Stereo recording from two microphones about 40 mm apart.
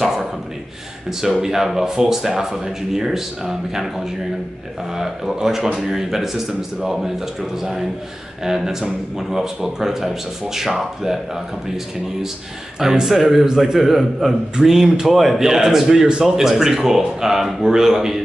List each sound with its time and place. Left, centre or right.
1.4 s a man's voice: centre
4.9 s a man's voice: centre
8.5 s a man's voice: centre
12.7 s a man's voice: centre
13.0 s a man's voice: centre